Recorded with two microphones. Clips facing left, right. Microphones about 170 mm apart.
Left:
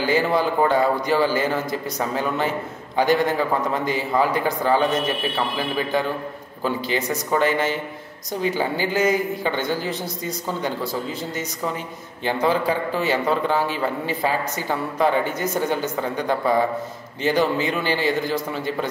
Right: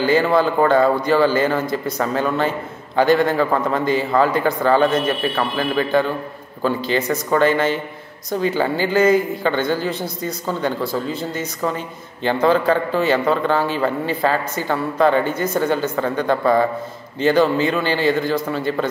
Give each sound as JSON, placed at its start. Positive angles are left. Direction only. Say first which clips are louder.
{"t": 0.0, "sound": "a woman's voice", "louder": "right 4 dB", "side_deg": 15}